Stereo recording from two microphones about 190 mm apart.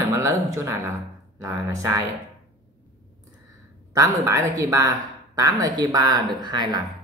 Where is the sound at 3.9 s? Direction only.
15° right (ahead or behind).